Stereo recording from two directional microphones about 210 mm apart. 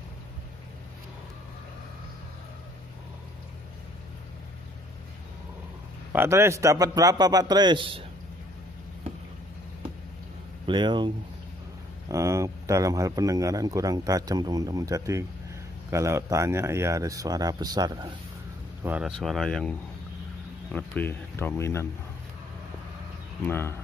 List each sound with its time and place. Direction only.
6.1 s speech: 10° right (ahead or behind)
10.7 s speech: 20° right (ahead or behind)
12.1 s speech: 15° right (ahead or behind)
18.8 s speech: 5° right (ahead or behind)
20.7 s speech: 10° left (ahead or behind)
23.4 s speech: 10° left (ahead or behind)